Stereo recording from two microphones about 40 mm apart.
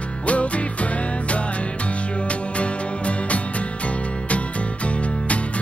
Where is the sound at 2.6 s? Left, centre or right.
Left.